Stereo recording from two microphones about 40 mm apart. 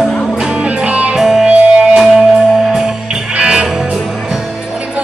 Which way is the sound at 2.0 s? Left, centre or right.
Centre.